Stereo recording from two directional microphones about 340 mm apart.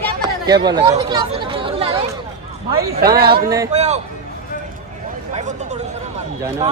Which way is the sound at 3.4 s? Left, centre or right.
Centre.